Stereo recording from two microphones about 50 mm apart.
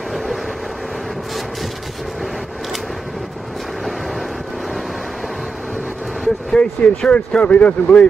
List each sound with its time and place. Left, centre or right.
6.2 s speech: centre